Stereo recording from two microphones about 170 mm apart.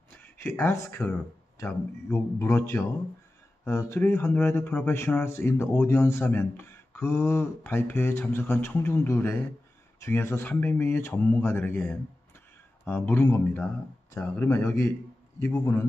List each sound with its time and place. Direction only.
0.1 s speech: 10° left (ahead or behind)